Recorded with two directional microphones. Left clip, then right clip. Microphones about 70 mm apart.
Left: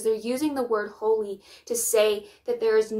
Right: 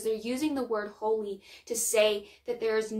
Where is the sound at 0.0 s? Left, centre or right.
Left.